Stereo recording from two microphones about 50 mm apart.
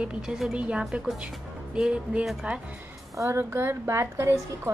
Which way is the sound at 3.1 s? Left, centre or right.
Right.